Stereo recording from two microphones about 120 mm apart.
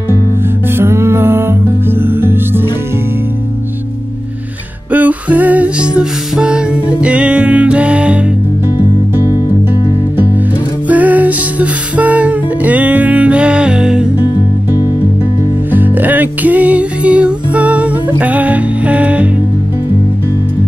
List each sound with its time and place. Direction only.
0.7 s music: 20° right (ahead or behind)
4.9 s music: 15° right (ahead or behind)
10.9 s music: 15° right (ahead or behind)
15.7 s music: 15° right (ahead or behind)